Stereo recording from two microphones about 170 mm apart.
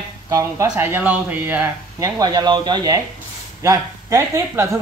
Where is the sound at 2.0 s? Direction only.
25° right (ahead or behind).